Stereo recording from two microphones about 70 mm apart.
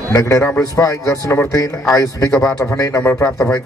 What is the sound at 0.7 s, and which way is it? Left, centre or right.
A man's voice, left.